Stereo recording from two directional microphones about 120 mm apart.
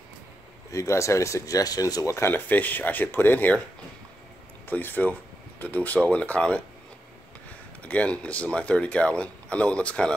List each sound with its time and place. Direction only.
0.7 s speech: 25° left (ahead or behind)
4.6 s speech: 15° left (ahead or behind)
7.8 s speech: 10° left (ahead or behind)